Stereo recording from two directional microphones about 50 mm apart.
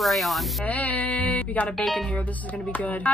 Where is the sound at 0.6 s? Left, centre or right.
Left.